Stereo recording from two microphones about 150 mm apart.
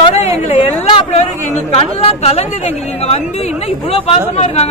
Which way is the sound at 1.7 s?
40° left (ahead or behind).